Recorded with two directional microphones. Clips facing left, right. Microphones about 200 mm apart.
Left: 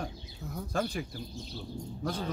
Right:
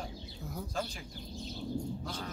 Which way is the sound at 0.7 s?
60° left (ahead or behind).